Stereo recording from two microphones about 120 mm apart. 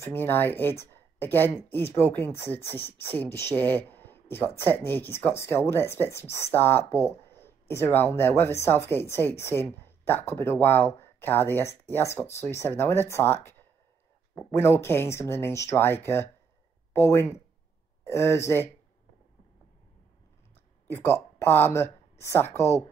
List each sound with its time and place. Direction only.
0.0 s speech: 15° left (ahead or behind)
20.8 s speech: 20° left (ahead or behind)